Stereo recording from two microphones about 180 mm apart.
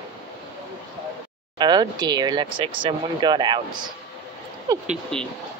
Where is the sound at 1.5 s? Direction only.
25° right (ahead or behind).